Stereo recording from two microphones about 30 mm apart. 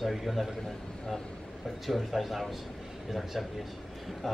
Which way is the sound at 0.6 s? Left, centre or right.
Centre.